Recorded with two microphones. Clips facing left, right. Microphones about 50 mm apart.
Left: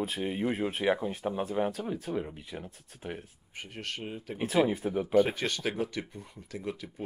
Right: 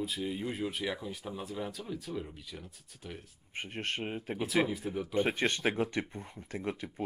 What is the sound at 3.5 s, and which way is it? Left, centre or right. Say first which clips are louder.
Speech: right 3 dB; right.